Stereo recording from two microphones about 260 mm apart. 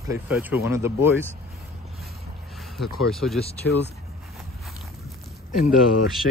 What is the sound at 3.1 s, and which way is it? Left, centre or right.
Speech, centre.